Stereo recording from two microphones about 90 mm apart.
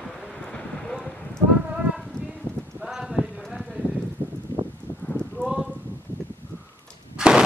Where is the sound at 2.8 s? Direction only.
5° right (ahead or behind).